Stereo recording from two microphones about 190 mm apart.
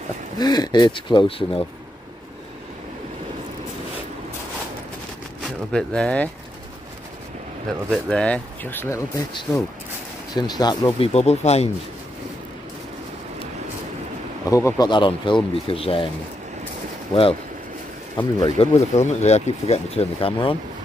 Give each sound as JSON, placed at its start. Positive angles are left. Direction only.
{"t": 0.4, "sound": "speech", "side_deg": 20}
{"t": 5.7, "sound": "speech", "side_deg": 5}
{"t": 7.9, "sound": "speech", "side_deg": 5}
{"t": 11.1, "sound": "speech", "side_deg": 35}
{"t": 14.5, "sound": "speech", "side_deg": 15}
{"t": 14.9, "sound": "speech", "side_deg": 25}
{"t": 17.1, "sound": "speech", "side_deg": 30}